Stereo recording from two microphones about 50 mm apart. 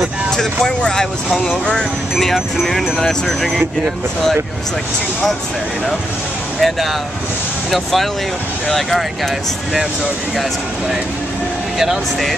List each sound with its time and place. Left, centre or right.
0.7 s speech: centre
2.6 s speech: centre
6.6 s speech: centre